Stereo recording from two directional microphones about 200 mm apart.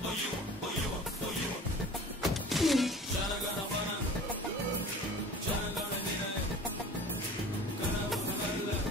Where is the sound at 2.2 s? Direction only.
Centre (ahead or behind).